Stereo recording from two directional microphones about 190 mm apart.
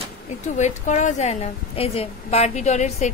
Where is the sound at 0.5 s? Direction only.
40° left (ahead or behind).